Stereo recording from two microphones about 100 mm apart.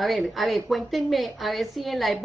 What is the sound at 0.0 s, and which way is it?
A woman's voice, centre (ahead or behind).